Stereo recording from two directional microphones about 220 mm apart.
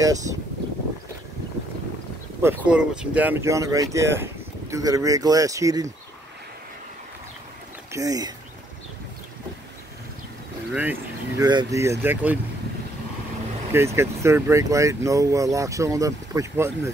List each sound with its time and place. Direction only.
0.0 s speech: 15° right (ahead or behind)
2.4 s speech: 5° right (ahead or behind)
7.9 s speech: 15° right (ahead or behind)
10.7 s speech: 10° right (ahead or behind)
13.7 s speech: 10° right (ahead or behind)